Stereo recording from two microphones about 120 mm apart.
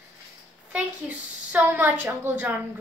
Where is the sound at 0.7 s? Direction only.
15° right (ahead or behind).